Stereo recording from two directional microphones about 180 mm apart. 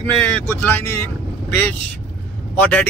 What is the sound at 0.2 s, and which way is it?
Speech, 10° left (ahead or behind).